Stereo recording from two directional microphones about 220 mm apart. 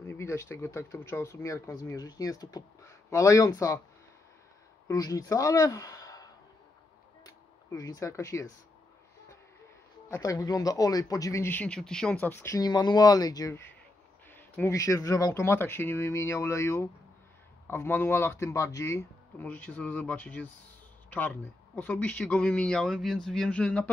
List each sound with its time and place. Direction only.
0.0 s speech: 10° left (ahead or behind)
4.8 s speech: 15° left (ahead or behind)
10.0 s speech: 15° left (ahead or behind)